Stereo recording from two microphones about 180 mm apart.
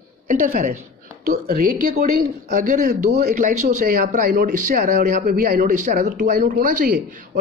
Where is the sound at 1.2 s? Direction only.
55° right (ahead or behind).